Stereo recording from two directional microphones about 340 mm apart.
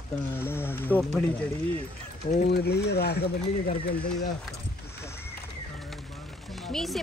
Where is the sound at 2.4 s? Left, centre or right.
Left.